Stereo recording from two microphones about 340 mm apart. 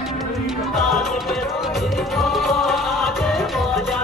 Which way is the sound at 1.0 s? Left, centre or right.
Centre.